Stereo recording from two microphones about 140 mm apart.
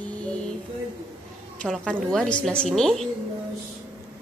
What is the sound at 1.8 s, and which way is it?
Speech, 5° left (ahead or behind).